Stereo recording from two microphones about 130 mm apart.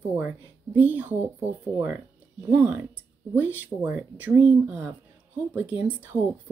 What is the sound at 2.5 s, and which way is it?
A woman's voice, 15° right (ahead or behind).